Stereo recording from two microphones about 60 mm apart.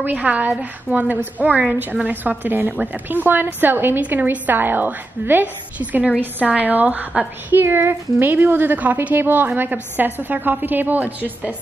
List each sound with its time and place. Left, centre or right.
0.0 s a woman's voice: right
7.6 s a woman's voice: right